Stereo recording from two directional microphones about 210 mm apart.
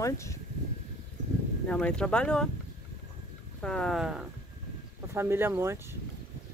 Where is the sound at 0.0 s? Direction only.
15° left (ahead or behind).